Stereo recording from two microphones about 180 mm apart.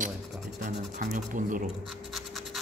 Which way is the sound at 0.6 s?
45° right (ahead or behind).